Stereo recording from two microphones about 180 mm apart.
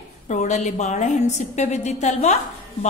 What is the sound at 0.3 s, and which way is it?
A woman's voice, 40° left (ahead or behind).